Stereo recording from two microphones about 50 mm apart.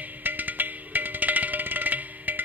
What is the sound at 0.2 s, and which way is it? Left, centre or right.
Music, right.